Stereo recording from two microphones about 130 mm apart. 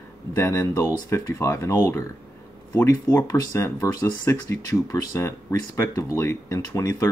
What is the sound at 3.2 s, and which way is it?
Speech, 25° left (ahead or behind).